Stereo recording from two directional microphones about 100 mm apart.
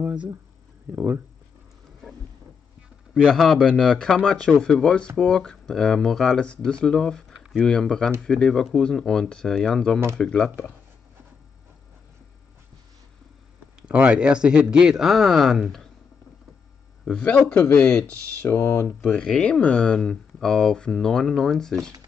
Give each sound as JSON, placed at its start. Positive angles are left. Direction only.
{"t": 0.0, "sound": "speech", "side_deg": -10}
{"t": 0.9, "sound": "speech", "side_deg": -25}
{"t": 3.3, "sound": "speech", "side_deg": 5}
{"t": 13.8, "sound": "speech", "side_deg": -15}
{"t": 17.4, "sound": "speech", "side_deg": 15}
{"t": 19.1, "sound": "speech", "side_deg": 5}